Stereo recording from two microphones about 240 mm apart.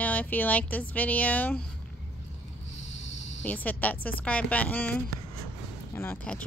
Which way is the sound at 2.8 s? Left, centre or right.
Left.